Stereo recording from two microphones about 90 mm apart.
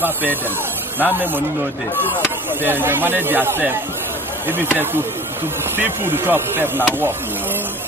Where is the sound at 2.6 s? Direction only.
25° right (ahead or behind).